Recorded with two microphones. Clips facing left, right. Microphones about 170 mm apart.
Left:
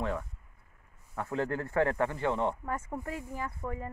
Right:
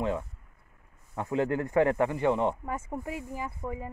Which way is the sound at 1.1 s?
20° right (ahead or behind).